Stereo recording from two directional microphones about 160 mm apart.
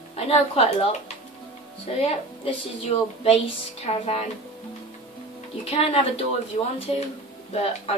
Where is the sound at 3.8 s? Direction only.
40° left (ahead or behind).